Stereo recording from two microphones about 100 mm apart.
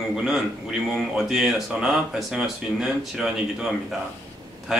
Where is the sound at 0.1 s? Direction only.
5° right (ahead or behind).